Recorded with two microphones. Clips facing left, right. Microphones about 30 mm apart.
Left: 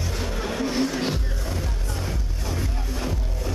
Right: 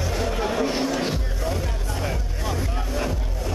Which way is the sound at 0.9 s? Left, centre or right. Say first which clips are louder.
Right 2 dB; centre.